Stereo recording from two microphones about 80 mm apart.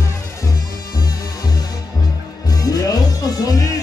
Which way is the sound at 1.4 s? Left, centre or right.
Left.